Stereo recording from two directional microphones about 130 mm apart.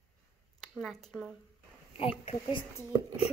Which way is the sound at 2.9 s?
35° right (ahead or behind).